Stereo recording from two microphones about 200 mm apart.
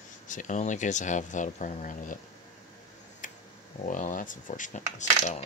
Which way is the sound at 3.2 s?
40° left (ahead or behind).